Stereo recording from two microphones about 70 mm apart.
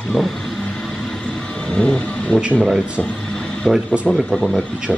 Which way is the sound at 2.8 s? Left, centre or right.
Centre.